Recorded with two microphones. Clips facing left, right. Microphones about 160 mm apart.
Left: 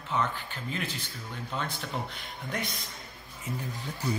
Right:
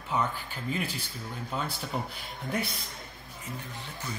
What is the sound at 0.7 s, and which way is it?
Speech, 10° right (ahead or behind).